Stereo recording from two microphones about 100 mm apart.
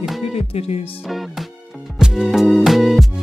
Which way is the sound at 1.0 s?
Centre (ahead or behind).